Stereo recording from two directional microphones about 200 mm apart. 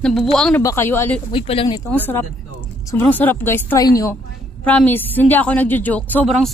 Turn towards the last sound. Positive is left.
turn(degrees=0)  # may be behind; listen again after turning